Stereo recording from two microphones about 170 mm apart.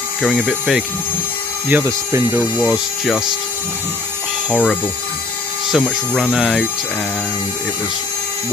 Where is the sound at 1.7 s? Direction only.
15° right (ahead or behind).